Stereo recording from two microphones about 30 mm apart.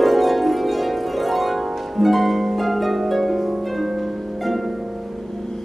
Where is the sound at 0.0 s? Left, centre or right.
Centre.